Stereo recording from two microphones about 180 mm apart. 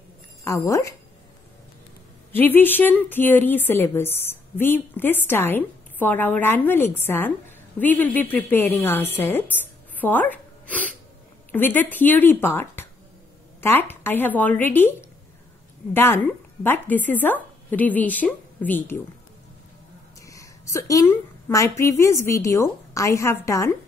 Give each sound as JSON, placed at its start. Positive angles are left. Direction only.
{"t": 0.4, "sound": "speech", "side_deg": 15}
{"t": 2.3, "sound": "a woman's voice", "side_deg": 10}
{"t": 9.9, "sound": "a sound", "side_deg": 10}
{"t": 11.5, "sound": "a woman's voice", "side_deg": 10}
{"t": 20.2, "sound": "a woman's voice", "side_deg": 20}